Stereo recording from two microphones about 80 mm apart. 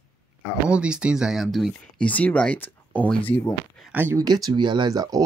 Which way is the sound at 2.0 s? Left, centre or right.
Centre.